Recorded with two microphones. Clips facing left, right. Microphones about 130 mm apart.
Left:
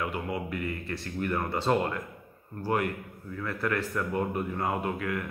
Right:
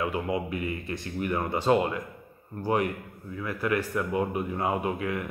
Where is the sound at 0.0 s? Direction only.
20° right (ahead or behind).